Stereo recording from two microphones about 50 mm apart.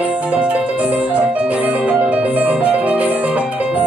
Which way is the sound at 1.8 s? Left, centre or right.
Right.